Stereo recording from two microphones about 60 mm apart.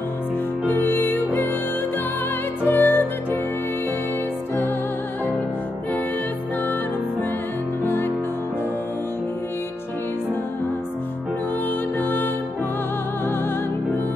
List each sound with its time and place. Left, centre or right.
0.7 s music: left
2.6 s music: left
7.8 s music: left
11.6 s music: left